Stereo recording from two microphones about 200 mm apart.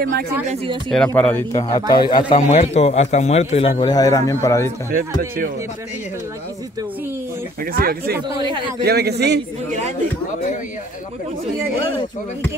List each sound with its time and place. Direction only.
0.8 s a man's voice: 5° left (ahead or behind)
7.7 s speech: 45° right (ahead or behind)
8.4 s a man's voice: 25° right (ahead or behind)
8.8 s a man's voice: 55° right (ahead or behind)